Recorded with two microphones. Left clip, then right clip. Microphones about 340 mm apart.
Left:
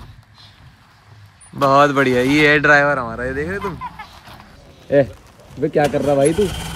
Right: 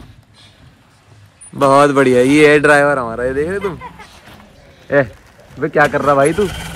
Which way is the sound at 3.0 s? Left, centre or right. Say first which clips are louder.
Right 5 dB; right.